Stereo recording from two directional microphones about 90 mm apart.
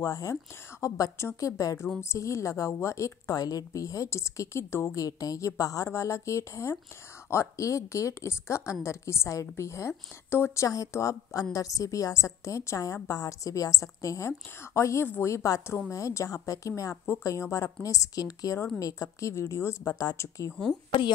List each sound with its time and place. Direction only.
0.0 s a woman's voice: 35° left (ahead or behind)
5.0 s a woman's voice: 40° left (ahead or behind)